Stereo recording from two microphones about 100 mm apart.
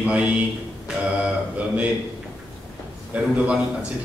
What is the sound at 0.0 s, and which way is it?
Speech, 15° right (ahead or behind).